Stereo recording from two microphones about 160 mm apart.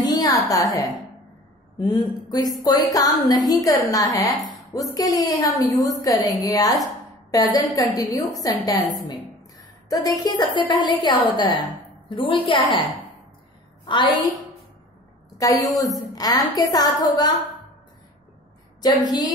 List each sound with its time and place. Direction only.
0.1 s a woman's voice: 25° left (ahead or behind)
9.8 s a woman's voice: 20° left (ahead or behind)
13.8 s a woman's voice: 30° left (ahead or behind)
15.3 s a woman's voice: 20° left (ahead or behind)
18.8 s a woman's voice: 25° left (ahead or behind)